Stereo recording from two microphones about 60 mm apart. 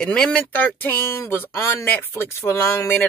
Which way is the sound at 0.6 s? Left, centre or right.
Left.